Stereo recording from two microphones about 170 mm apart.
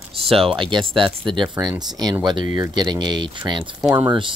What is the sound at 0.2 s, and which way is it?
Speech, 35° right (ahead or behind).